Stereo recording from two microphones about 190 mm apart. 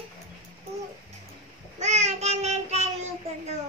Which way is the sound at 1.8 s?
35° right (ahead or behind).